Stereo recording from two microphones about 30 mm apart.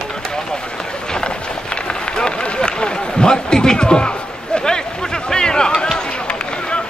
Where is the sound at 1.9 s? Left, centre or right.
Left.